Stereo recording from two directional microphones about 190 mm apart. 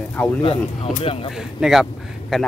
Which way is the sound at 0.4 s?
30° left (ahead or behind).